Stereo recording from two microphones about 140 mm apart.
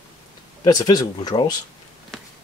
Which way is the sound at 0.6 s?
30° left (ahead or behind).